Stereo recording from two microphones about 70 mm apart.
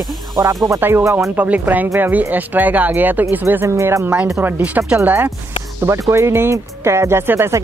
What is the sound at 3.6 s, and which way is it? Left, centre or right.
Speech, right.